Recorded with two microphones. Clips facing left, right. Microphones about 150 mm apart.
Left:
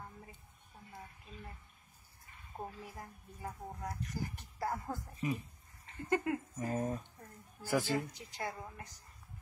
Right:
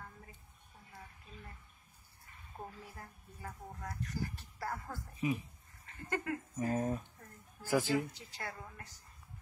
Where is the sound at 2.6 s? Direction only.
10° left (ahead or behind).